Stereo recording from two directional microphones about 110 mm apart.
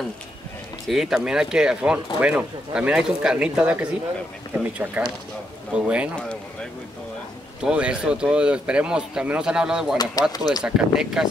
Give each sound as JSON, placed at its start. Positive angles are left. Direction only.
{"t": 0.8, "sound": "speech", "side_deg": -5}
{"t": 7.6, "sound": "speech", "side_deg": -10}
{"t": 10.2, "sound": "speech", "side_deg": 35}
{"t": 10.6, "sound": "speech", "side_deg": -5}